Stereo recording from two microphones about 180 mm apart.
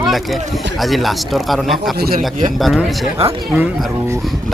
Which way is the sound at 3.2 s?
30° right (ahead or behind).